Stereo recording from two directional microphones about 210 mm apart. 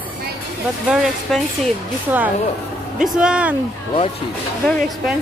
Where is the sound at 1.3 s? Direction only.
Centre (ahead or behind).